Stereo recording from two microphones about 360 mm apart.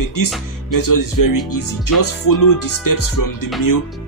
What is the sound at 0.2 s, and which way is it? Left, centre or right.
Speech, left.